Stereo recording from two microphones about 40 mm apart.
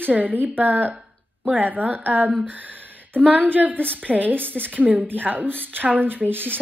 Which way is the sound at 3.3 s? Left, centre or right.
Right.